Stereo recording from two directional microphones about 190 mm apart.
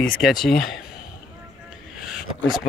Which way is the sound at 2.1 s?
Centre (ahead or behind).